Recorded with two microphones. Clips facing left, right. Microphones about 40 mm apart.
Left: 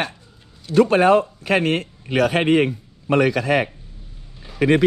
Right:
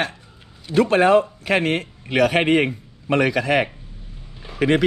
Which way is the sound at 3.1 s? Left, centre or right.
Right.